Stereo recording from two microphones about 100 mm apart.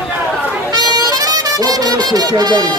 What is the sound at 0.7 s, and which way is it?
Music, 40° right (ahead or behind).